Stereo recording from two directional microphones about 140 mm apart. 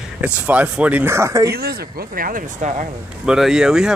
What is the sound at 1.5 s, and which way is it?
Speech, 90° right.